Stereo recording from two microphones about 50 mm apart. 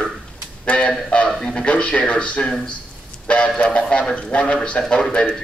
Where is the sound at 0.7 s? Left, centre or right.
Left.